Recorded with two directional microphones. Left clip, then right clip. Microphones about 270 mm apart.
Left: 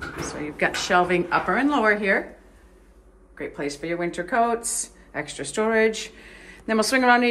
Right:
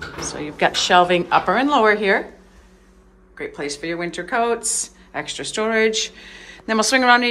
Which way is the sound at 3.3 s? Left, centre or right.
Centre.